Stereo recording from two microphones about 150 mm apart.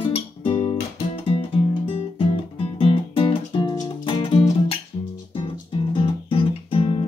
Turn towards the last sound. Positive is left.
turn(degrees=35)  # may be behind; listen again after turning